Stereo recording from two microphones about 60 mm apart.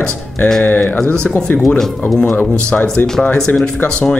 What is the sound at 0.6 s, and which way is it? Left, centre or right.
Speech, left.